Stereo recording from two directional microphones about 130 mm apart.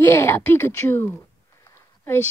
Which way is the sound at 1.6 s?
20° left (ahead or behind).